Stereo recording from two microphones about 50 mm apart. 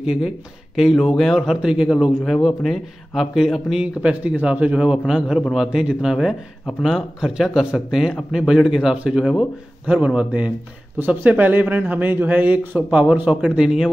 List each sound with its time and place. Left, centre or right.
0.0 s speech: centre
2.4 s speech: centre
3.8 s a man's voice: right
13.6 s speech: centre